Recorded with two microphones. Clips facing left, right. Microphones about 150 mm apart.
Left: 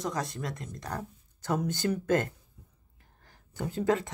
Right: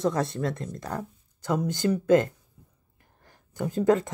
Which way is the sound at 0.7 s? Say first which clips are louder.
Right 4 dB; 45° right (ahead or behind).